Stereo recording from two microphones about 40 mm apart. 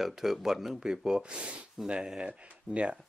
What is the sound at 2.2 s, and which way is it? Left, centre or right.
Speech, right.